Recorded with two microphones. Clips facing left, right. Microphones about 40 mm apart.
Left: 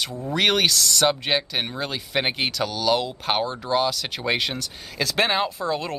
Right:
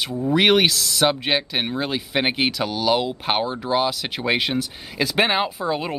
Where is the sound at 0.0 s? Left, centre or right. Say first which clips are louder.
Right 4 dB; centre.